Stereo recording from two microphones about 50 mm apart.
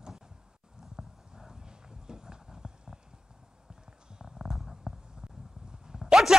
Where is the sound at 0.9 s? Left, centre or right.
Centre.